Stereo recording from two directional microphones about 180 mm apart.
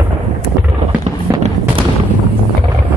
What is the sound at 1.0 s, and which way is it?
Music, 35° right (ahead or behind).